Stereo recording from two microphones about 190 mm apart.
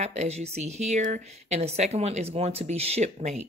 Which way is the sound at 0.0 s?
35° right (ahead or behind).